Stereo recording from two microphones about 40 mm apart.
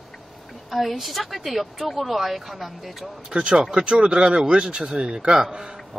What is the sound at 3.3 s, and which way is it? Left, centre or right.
Speech, right.